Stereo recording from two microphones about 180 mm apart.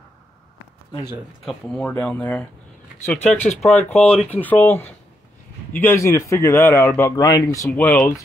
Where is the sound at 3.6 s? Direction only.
5° left (ahead or behind).